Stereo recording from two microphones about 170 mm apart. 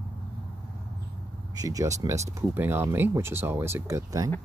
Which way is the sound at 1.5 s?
20° right (ahead or behind).